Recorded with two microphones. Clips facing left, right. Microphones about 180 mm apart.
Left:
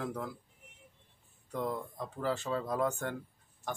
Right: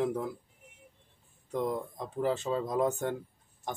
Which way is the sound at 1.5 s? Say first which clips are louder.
Right 4 dB; 20° right (ahead or behind).